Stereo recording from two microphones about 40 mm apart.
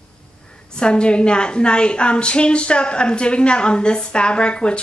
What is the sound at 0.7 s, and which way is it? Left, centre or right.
Speech, left.